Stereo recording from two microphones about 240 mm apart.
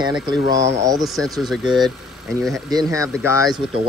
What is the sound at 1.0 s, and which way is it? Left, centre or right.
Speech, centre.